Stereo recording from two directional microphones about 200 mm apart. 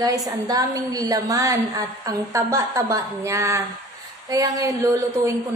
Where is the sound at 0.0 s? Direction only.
15° right (ahead or behind).